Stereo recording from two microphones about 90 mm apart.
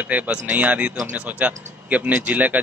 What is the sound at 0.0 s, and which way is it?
Speech, 15° right (ahead or behind).